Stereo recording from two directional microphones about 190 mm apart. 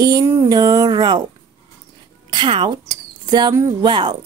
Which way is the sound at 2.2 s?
25° right (ahead or behind).